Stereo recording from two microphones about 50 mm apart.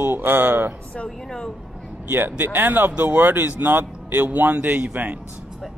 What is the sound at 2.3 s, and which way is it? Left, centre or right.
A man's voice, right.